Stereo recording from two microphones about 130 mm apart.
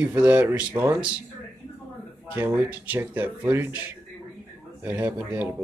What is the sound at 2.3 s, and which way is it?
Speech, 10° right (ahead or behind).